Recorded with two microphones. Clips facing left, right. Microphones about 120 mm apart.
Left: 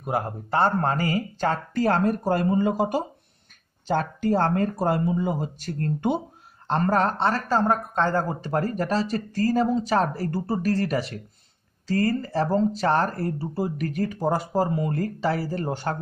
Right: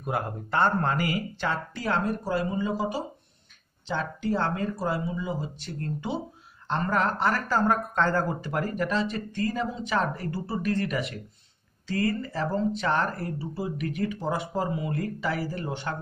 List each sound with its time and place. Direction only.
0.0 s speech: 30° left (ahead or behind); by 6.2 s 55° left (ahead or behind)
6.7 s speech: 35° left (ahead or behind)